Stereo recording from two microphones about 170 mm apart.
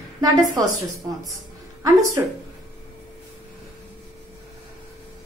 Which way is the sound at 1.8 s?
20° right (ahead or behind).